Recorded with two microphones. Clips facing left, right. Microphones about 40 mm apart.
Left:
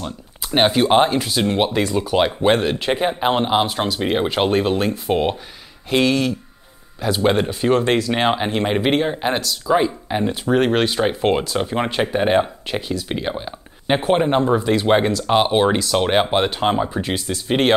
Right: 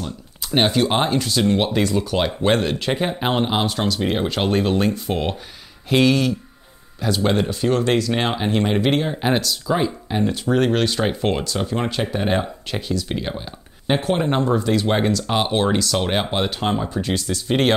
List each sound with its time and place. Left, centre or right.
0.5 s speech: centre
3.2 s speech: centre
5.9 s speech: centre
7.0 s speech: centre
9.2 s speech: centre